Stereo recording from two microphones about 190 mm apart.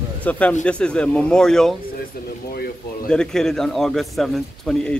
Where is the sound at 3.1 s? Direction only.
5° left (ahead or behind).